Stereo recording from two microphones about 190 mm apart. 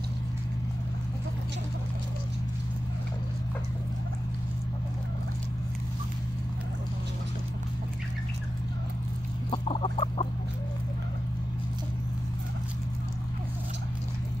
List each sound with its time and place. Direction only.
9.5 s chicken: 30° left (ahead or behind)